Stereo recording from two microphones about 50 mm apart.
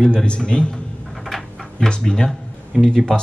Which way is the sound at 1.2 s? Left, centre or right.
Centre.